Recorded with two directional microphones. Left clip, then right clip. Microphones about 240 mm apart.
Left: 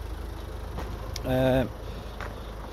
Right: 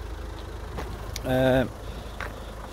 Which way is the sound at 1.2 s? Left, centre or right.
Centre.